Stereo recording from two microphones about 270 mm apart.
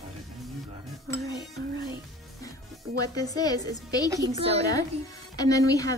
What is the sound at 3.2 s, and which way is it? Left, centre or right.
Speech, centre.